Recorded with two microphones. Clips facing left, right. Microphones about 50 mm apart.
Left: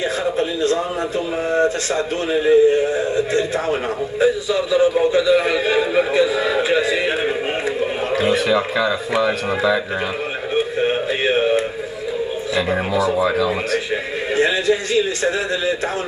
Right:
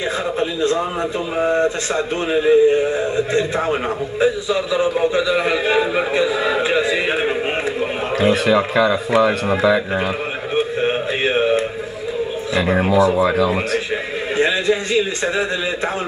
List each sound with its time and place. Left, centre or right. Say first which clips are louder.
0.4 s a man's voice: right 1 dB; right
8.2 s speech: right 3 dB; centre
10.5 s a sound: even; centre
12.6 s speech: right 6 dB; centre
14.3 s a man's voice: even; right